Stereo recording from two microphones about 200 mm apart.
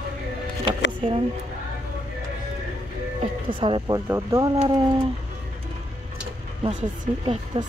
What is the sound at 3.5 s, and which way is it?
Speech, 25° right (ahead or behind).